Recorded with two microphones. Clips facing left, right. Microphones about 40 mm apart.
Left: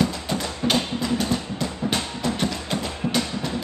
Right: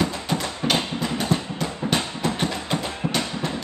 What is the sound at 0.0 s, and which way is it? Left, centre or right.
Music, right.